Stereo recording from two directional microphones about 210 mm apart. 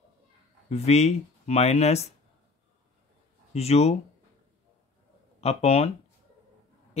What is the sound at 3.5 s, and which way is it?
Speech, 30° left (ahead or behind).